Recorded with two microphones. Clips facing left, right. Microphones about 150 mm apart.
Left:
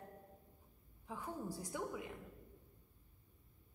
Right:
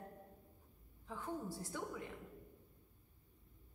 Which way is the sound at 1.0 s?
10° left (ahead or behind).